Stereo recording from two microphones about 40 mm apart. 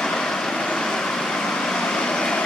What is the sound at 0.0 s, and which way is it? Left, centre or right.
Vehicle, centre.